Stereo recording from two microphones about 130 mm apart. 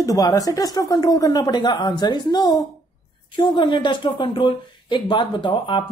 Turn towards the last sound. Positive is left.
turn(degrees=40)  # may be behind; listen again after turning